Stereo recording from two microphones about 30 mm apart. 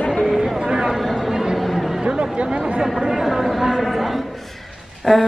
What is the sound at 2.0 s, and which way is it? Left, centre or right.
Chatter, right.